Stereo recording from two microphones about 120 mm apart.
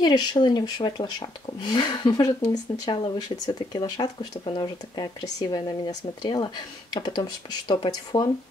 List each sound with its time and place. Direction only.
0.0 s speech: 35° left (ahead or behind)